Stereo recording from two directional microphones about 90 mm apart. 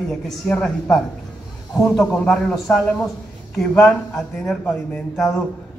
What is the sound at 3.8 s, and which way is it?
A man's voice, 5° left (ahead or behind).